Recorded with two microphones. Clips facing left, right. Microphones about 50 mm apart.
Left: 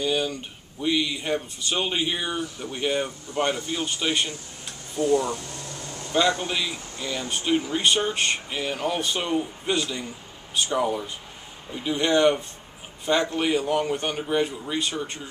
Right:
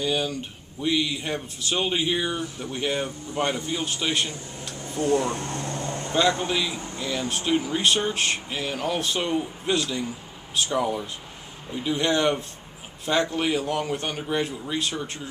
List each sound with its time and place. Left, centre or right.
0.0 s speech: centre
5.0 s speech: right
6.4 s speech: centre